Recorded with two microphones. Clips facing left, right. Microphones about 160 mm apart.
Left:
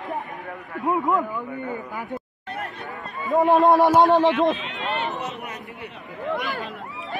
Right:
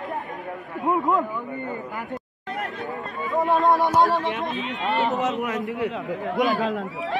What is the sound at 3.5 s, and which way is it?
Speech, 65° left (ahead or behind).